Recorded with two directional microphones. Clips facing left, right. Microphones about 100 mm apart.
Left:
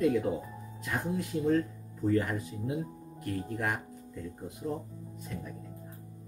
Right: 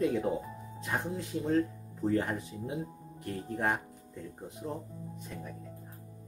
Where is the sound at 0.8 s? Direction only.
30° right (ahead or behind).